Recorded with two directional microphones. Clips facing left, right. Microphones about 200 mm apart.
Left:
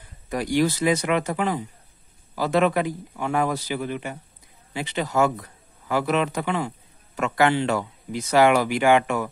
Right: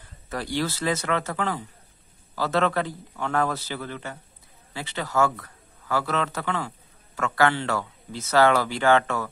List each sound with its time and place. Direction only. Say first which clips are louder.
0.3 s speech: left 6 dB; 15° left (ahead or behind)